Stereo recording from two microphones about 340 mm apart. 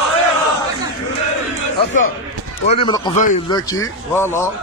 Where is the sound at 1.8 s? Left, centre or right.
Left.